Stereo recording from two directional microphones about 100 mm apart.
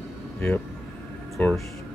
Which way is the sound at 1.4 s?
15° left (ahead or behind).